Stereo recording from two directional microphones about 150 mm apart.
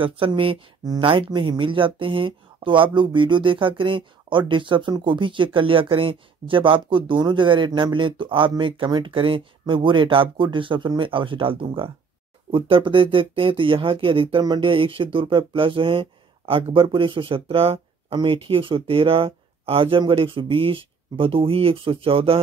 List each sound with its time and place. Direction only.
0.0 s speech: 35° right (ahead or behind)